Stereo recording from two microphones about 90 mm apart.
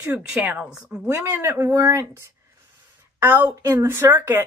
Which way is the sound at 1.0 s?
35° right (ahead or behind).